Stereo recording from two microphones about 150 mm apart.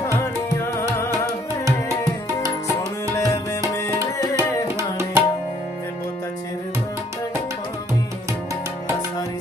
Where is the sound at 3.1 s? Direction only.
20° left (ahead or behind).